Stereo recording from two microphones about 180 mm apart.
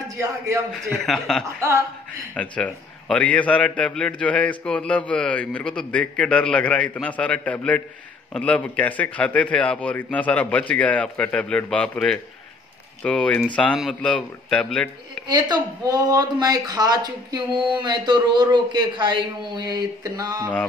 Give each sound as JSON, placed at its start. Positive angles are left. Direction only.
{"t": 0.1, "sound": "speech", "side_deg": -15}
{"t": 0.7, "sound": "a man's voice", "side_deg": 0}
{"t": 15.2, "sound": "speech", "side_deg": -25}